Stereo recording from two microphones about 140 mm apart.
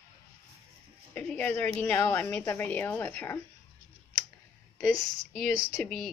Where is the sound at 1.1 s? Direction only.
10° left (ahead or behind).